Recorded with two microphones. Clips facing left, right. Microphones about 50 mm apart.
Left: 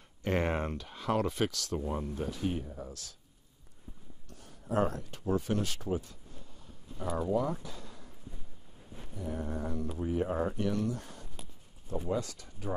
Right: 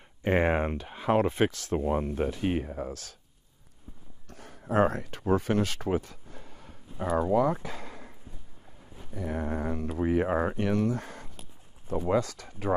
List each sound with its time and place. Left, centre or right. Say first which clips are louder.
0.2 s speech: right 6 dB; right
1.8 s speech: right 9 dB; right
4.3 s a sound: right 5 dB; right
5.2 s speech: right 5 dB; right
7.0 s speech: right 7 dB; right
7.2 s speech: right 5 dB; right
9.1 s speech: right 5 dB; right
9.9 s speech: right 6 dB; right
12.0 s speech: right 8 dB; right